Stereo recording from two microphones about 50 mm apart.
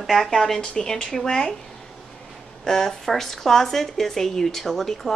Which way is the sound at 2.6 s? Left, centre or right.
Centre.